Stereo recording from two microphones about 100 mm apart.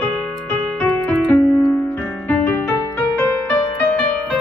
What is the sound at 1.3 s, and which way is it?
Music, 25° left (ahead or behind).